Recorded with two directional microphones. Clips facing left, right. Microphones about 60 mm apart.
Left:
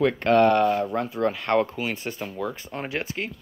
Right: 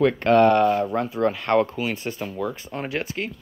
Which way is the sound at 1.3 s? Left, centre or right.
Centre.